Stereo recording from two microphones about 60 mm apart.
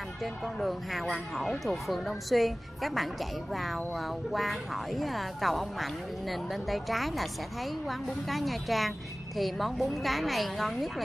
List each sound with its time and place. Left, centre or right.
0.2 s speech: centre